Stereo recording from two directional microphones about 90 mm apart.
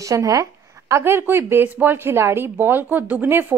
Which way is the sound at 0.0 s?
35° right (ahead or behind).